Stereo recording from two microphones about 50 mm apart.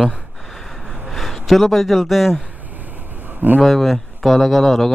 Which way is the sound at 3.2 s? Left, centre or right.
Right.